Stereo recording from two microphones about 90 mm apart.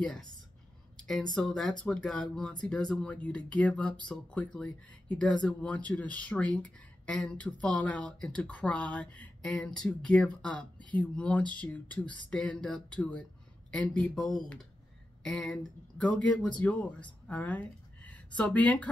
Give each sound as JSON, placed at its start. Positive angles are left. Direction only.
{"t": 0.0, "sound": "speech", "side_deg": 10}